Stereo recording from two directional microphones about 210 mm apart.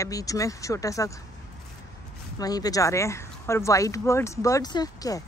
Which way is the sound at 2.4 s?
15° left (ahead or behind).